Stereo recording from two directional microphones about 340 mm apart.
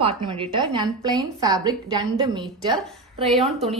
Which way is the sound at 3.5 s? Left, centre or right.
Centre.